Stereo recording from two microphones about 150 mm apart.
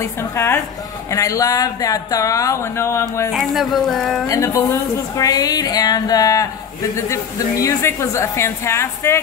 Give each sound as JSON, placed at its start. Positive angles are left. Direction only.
{"t": 0.0, "sound": "a woman's voice", "side_deg": 15}
{"t": 3.3, "sound": "a woman's voice", "side_deg": 0}
{"t": 4.3, "sound": "a woman's voice", "side_deg": 20}